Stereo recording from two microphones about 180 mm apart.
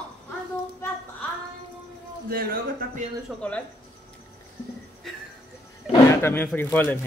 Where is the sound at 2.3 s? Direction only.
55° right (ahead or behind).